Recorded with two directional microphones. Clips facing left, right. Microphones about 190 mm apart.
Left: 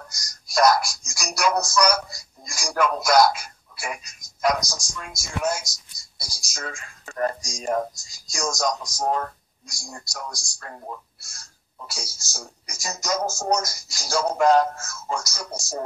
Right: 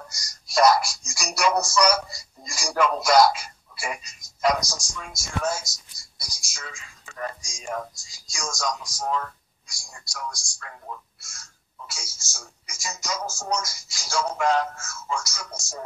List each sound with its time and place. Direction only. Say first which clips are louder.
0.0 s speech: right 1 dB; 5° right (ahead or behind)
4.9 s speech: even; 5° left (ahead or behind)
6.1 s speech: left 6 dB; 30° left (ahead or behind)